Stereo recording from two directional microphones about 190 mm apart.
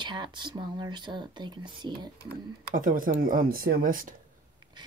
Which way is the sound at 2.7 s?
45° right (ahead or behind).